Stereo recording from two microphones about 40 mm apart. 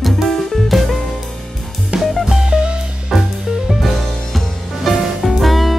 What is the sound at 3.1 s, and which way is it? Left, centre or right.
Music, centre.